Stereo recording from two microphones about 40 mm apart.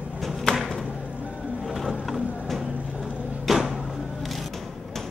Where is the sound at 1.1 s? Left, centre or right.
Right.